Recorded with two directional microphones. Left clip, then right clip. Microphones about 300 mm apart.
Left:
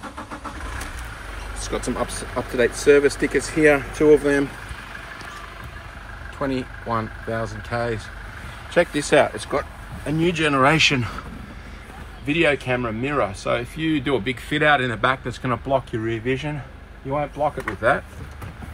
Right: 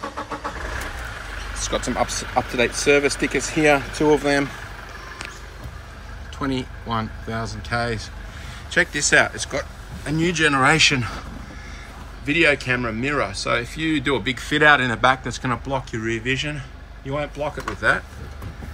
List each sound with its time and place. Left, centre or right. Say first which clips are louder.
2.0 s speech: right 5 dB; centre
6.4 s speech: left 1 dB; centre
12.3 s speech: right 2 dB; centre